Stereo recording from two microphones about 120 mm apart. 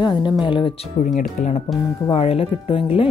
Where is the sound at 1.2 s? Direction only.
75° left (ahead or behind).